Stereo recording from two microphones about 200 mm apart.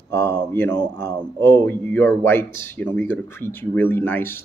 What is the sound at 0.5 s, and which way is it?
Speech, 10° left (ahead or behind).